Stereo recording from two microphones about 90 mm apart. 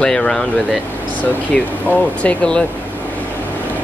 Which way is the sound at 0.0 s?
10° left (ahead or behind).